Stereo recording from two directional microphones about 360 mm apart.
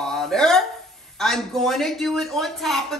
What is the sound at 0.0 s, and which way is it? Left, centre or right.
Hiccup, centre.